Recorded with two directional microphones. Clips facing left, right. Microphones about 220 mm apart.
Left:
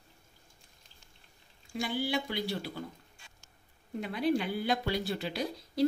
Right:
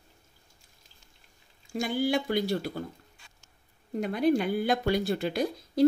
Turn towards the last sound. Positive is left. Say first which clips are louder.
# right 5 dB
turn(degrees=-50)  # may be behind; listen again after turning